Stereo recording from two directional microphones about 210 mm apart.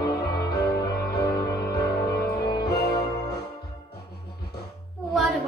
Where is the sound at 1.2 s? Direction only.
20° left (ahead or behind).